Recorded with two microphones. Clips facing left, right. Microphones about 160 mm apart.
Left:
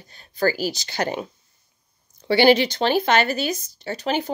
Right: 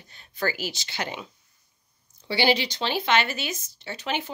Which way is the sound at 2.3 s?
55° left (ahead or behind).